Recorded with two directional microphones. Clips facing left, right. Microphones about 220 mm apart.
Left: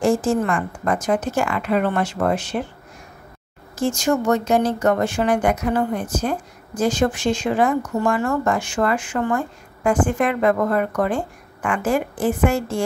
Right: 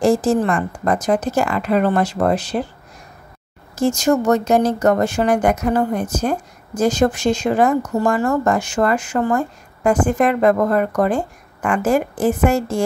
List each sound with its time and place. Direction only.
0.0 s speech: 35° right (ahead or behind)
3.7 s speech: 40° right (ahead or behind)